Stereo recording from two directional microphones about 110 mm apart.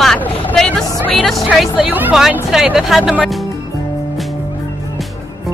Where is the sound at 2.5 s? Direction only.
5° right (ahead or behind).